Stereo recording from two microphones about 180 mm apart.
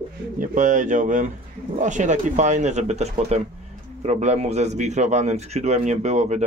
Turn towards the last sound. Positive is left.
turn(degrees=-40)  # may be behind; listen again after turning